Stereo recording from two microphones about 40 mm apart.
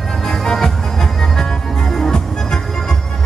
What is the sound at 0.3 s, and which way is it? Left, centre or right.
Music, centre.